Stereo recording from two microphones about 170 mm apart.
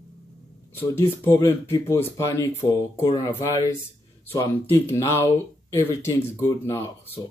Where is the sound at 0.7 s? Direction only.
15° left (ahead or behind).